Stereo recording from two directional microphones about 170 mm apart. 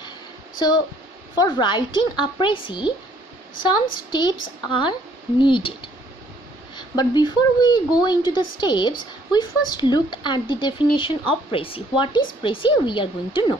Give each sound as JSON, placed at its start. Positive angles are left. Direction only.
{"t": 0.6, "sound": "speech", "side_deg": 25}